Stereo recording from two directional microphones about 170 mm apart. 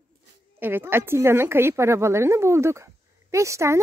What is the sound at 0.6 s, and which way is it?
A woman's voice, 10° right (ahead or behind).